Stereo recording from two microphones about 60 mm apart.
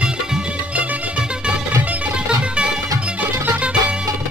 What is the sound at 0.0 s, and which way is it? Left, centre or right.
Music, centre.